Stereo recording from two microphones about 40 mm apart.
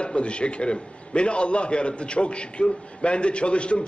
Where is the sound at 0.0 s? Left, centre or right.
Left.